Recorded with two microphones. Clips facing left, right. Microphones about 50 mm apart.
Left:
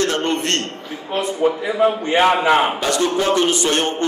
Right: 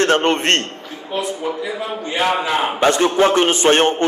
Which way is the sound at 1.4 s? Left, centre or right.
Left.